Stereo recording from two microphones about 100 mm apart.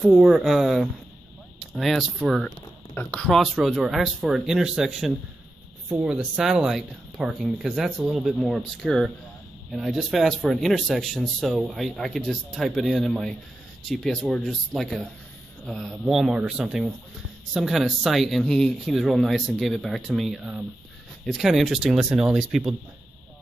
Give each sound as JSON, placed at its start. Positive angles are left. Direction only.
{"t": 0.0, "sound": "speech", "side_deg": 0}
{"t": 2.9, "sound": "speech", "side_deg": 20}
{"t": 3.3, "sound": "speech", "side_deg": 0}